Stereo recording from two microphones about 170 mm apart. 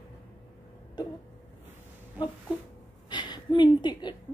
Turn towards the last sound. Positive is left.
turn(degrees=25)  # may be behind; listen again after turning